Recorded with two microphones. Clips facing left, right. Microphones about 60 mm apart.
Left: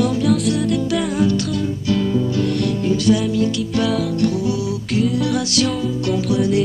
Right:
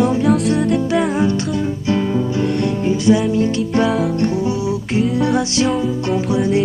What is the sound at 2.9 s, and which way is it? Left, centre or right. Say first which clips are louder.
Music: right 3 dB; right.